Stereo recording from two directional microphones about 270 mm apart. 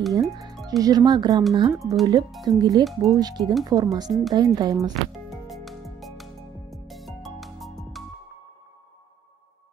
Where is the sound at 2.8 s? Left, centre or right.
Centre.